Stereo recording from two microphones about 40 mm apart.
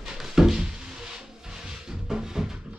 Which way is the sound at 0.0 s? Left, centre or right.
Centre.